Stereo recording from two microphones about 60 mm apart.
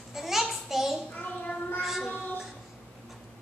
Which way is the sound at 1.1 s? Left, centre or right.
Left.